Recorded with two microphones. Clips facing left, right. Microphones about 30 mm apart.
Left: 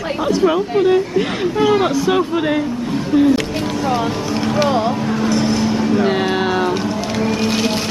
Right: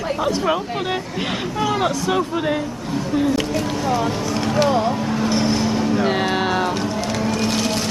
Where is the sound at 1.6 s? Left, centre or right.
Centre.